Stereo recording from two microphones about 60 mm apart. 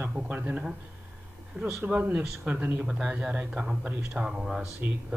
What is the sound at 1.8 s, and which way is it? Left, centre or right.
Speech, right.